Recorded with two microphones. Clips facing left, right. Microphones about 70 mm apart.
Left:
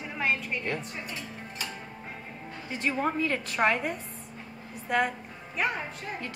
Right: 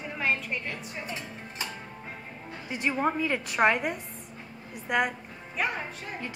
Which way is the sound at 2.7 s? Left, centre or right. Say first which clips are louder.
Right 1 dB; centre.